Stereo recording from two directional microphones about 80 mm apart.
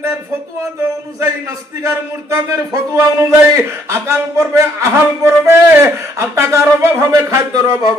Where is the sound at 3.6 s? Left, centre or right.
Right.